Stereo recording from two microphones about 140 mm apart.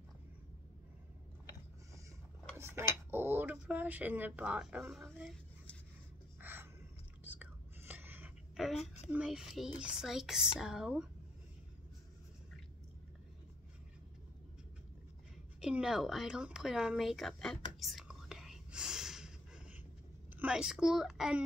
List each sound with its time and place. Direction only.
2.5 s cutlery: 15° right (ahead or behind)
6.4 s a sound: 15° right (ahead or behind)
7.2 s whispering: 10° right (ahead or behind)
8.5 s a sound: centre (ahead or behind)
9.1 s speech: 5° right (ahead or behind)
15.6 s speech: 5° right (ahead or behind)